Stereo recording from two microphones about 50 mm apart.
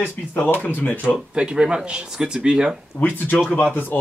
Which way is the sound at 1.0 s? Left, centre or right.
Centre.